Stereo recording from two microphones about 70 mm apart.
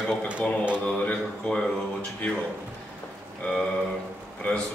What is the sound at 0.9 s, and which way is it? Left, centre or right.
Speech, centre.